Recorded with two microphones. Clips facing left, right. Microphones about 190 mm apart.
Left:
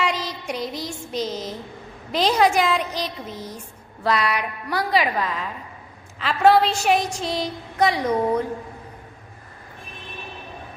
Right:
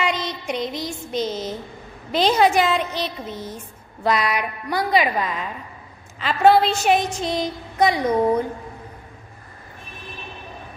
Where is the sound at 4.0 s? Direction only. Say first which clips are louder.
Right 1 dB; 10° right (ahead or behind).